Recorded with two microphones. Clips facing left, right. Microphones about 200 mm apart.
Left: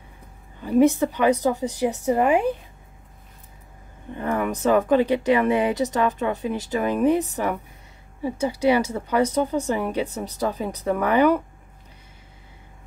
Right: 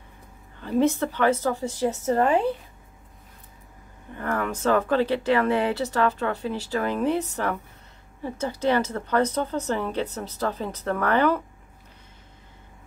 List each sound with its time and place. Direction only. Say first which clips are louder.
0.6 s speech: left 4 dB; 10° left (ahead or behind)
4.1 s speech: left 3 dB; 15° left (ahead or behind)